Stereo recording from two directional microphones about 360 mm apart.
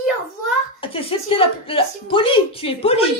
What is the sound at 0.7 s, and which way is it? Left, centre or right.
A woman's voice, centre.